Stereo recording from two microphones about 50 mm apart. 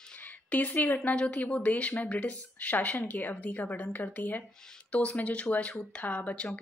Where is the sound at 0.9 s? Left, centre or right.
Left.